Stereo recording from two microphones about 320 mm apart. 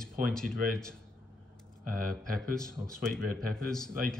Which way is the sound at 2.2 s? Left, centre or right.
Centre.